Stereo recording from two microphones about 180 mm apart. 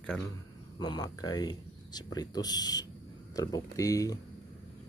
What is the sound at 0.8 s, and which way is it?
Speech, 20° left (ahead or behind).